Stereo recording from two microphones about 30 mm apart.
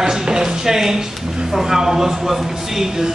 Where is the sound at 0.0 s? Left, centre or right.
Right.